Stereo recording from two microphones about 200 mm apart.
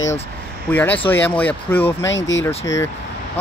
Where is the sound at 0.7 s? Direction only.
10° left (ahead or behind).